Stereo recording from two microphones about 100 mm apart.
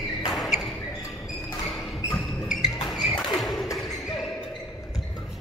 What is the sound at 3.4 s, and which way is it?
Thump, centre (ahead or behind).